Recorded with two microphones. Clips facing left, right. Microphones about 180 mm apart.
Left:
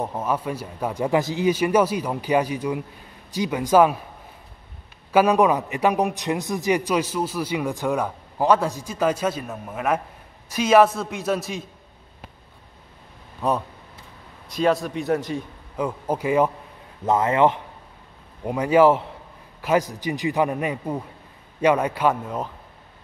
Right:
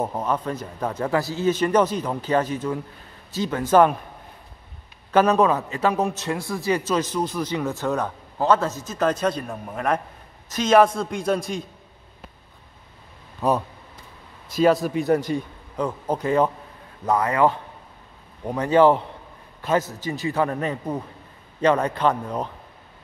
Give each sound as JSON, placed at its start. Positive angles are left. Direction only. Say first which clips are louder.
{"t": 0.0, "sound": "a man's voice", "louder": "right 1 dB", "side_deg": 5}
{"t": 5.1, "sound": "a man's voice", "louder": "even", "side_deg": 10}
{"t": 13.4, "sound": "a man's voice", "louder": "right 2 dB", "side_deg": 0}
{"t": 17.0, "sound": "a man's voice", "louder": "left 1 dB", "side_deg": 25}
{"t": 18.4, "sound": "a man's voice", "louder": "even", "side_deg": 10}